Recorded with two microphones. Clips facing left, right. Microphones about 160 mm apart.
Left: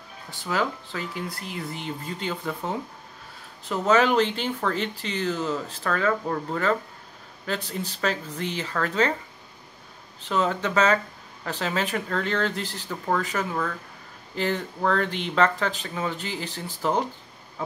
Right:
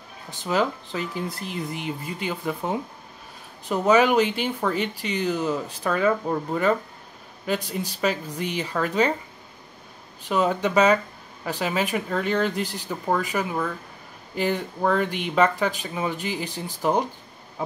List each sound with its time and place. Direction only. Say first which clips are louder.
0.3 s speech: right 3 dB; 20° right (ahead or behind)
10.2 s speech: right 3 dB; 15° right (ahead or behind)